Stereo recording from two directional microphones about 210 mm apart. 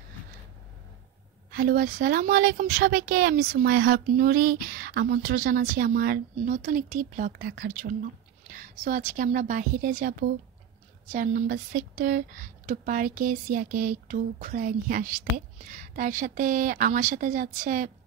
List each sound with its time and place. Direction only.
1.5 s a woman's voice: 45° right (ahead or behind)